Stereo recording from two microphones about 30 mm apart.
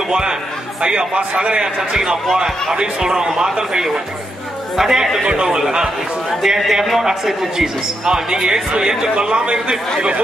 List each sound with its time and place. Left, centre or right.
0.1 s a man's voice: right
1.8 s a man's voice: centre
4.7 s a man's voice: centre
5.2 s a man's voice: right
5.5 s speech: right
6.4 s a man's voice: centre
9.1 s a man's voice: right